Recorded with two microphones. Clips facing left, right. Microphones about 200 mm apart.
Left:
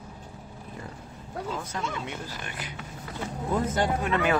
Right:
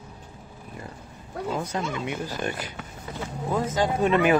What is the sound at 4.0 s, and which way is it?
Speech, 20° right (ahead or behind).